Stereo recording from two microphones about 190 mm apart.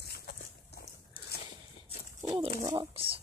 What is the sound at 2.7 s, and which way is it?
Speech, 25° right (ahead or behind).